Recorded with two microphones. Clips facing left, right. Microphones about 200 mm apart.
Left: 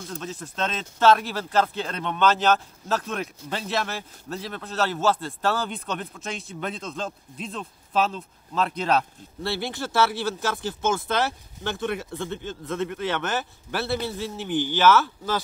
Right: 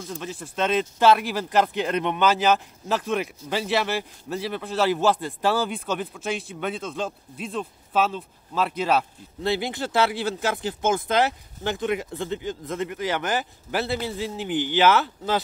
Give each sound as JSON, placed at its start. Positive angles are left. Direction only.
{"t": 0.1, "sound": "speech", "side_deg": -10}
{"t": 9.4, "sound": "speech", "side_deg": -15}
{"t": 11.6, "sound": "speech", "side_deg": -15}